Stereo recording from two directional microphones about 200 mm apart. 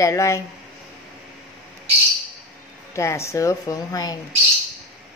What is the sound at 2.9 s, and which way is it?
A woman's voice, 15° left (ahead or behind).